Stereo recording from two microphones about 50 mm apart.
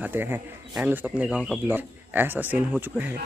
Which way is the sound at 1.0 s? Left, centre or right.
Right.